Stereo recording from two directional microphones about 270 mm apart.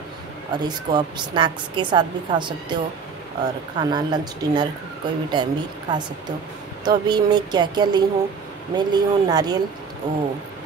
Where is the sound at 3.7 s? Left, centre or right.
Centre.